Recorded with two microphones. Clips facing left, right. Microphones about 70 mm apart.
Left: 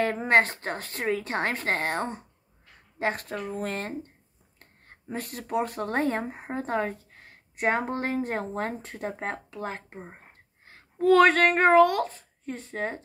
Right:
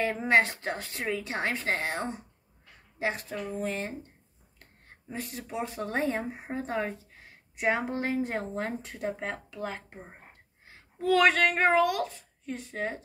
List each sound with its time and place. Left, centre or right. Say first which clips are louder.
0.0 s a woman's voice: left 2 dB; left
9.9 s speech: left 4 dB; centre
10.6 s speech: left 7 dB; left